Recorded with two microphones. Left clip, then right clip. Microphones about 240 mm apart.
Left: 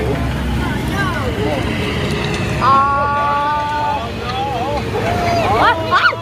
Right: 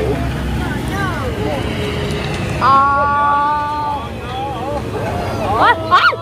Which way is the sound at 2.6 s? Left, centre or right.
Right.